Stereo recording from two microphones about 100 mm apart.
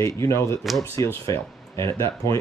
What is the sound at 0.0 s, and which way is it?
Speech, 30° left (ahead or behind).